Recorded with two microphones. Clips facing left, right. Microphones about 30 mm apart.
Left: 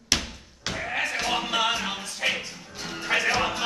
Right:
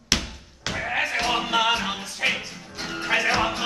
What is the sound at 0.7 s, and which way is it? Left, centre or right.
Bleat, centre.